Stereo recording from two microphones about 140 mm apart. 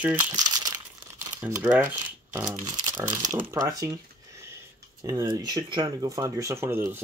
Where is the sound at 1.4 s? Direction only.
15° right (ahead or behind).